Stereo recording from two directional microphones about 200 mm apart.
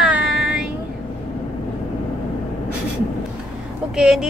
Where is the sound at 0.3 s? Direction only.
Centre (ahead or behind).